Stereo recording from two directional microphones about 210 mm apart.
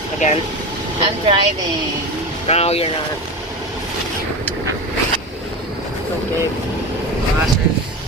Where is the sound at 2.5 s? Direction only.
30° left (ahead or behind).